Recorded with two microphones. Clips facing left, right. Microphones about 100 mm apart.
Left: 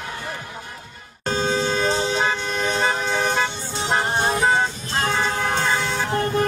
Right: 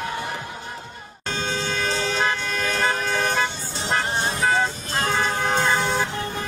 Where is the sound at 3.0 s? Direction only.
20° left (ahead or behind).